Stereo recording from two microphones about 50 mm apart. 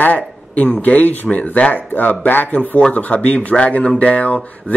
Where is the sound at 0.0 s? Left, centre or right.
Left.